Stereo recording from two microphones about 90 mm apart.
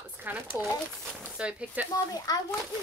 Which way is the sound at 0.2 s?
25° right (ahead or behind).